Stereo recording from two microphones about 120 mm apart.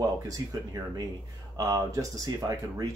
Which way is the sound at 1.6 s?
30° right (ahead or behind).